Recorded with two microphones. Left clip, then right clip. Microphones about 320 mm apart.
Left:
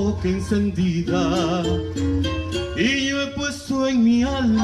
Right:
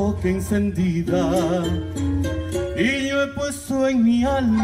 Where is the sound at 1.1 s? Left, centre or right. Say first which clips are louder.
Right 2 dB; centre.